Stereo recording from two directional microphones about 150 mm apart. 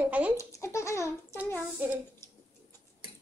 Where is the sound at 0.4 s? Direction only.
20° left (ahead or behind).